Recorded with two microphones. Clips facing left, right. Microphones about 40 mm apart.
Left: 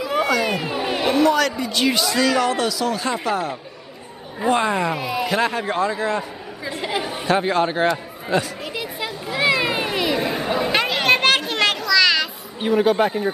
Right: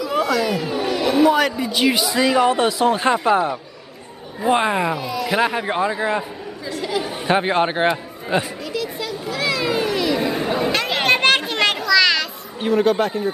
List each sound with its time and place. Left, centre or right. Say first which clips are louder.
0.1 s a sound: even; centre
1.1 s a man's voice: right 2 dB; centre
6.7 s speech: right 1 dB; left
7.2 s a man's voice: right 1 dB; right
8.7 s children playing: right 4 dB; left
10.1 s chatter: right 1 dB; centre
10.9 s children playing: right 2 dB; centre